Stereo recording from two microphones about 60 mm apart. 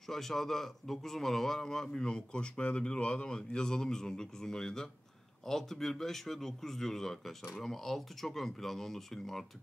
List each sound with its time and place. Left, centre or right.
0.0 s a man's voice: centre